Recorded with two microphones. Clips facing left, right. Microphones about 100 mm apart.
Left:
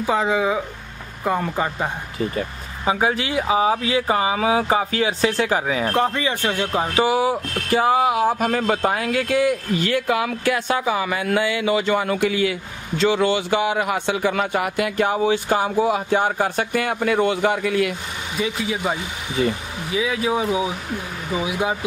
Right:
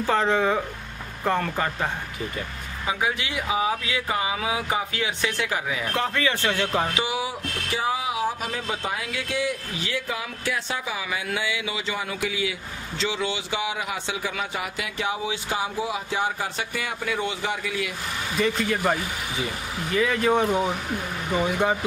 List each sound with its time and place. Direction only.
0.0 s speech: 5° left (ahead or behind)
2.3 s speech: 35° left (ahead or behind)
5.9 s speech: 20° left (ahead or behind)
6.9 s speech: 45° left (ahead or behind)
18.4 s speech: 5° left (ahead or behind)
19.9 s speech: 5° left (ahead or behind)